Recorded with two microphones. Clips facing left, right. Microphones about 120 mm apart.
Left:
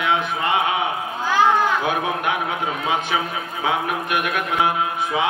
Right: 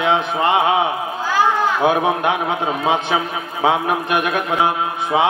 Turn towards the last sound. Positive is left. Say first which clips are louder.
# right 4 dB
turn(degrees=-30)  # may be behind; listen again after turning